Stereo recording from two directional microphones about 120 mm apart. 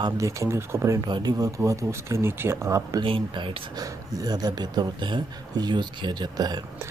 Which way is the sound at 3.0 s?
45° right (ahead or behind).